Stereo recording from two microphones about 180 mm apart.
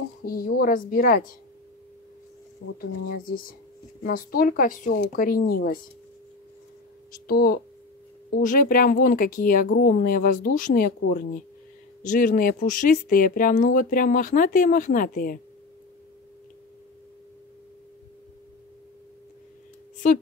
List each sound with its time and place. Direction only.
0.2 s speech: 55° left (ahead or behind)
3.3 s speech: 50° left (ahead or behind)
7.1 s speech: 55° left (ahead or behind)